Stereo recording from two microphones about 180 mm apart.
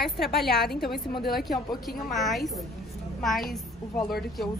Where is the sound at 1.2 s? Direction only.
55° left (ahead or behind).